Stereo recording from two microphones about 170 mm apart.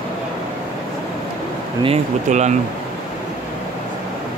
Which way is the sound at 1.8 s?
40° right (ahead or behind).